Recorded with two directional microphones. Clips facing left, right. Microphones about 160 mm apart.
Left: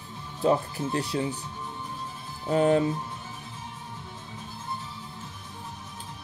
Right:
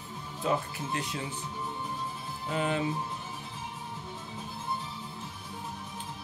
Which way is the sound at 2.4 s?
40° left (ahead or behind).